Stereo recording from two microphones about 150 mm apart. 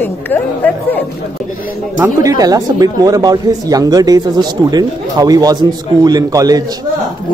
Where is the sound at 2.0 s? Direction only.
20° right (ahead or behind).